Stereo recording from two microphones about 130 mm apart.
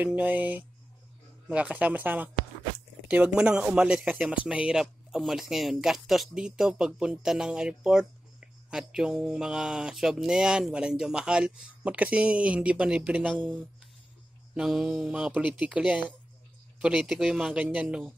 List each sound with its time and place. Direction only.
0.0 s speech: 10° right (ahead or behind)
14.5 s speech: 5° right (ahead or behind)